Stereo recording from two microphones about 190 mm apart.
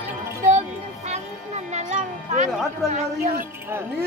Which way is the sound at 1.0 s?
35° right (ahead or behind).